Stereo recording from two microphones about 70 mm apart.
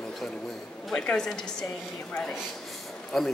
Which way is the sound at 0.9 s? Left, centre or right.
Centre.